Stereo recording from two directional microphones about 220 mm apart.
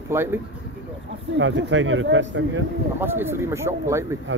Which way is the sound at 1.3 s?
55° right (ahead or behind).